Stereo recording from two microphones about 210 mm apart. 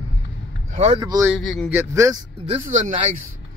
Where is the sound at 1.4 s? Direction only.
Centre (ahead or behind).